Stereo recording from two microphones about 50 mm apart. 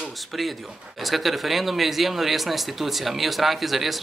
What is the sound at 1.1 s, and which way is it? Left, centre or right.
Speech, centre.